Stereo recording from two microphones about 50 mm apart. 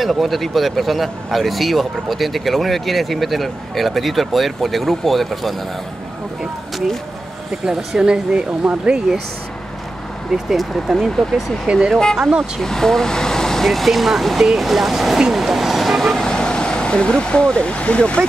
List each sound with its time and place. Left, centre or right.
0.0 s speech: centre
7.6 s speech: centre
9.1 s speech: centre
10.3 s speech: centre
11.6 s speech: centre
11.9 s speech: centre
12.2 s speech: centre
12.6 s speech: centre
16.2 s speech: centre